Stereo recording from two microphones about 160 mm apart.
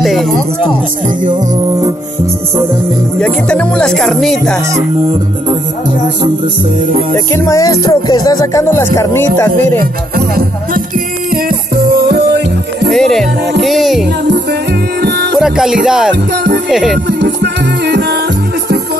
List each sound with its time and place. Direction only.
0.0 s speech: centre (ahead or behind)
3.2 s speech: 5° left (ahead or behind)
7.3 s music: 20° left (ahead or behind)
10.1 s music: 70° right (ahead or behind)
12.0 s music: 85° right
12.9 s music: 5° left (ahead or behind)
13.6 s speech: centre (ahead or behind)
15.0 s music: 90° right
15.3 s music: 5° right (ahead or behind)
15.8 s speech: 5° right (ahead or behind)
17.1 s music: 90° right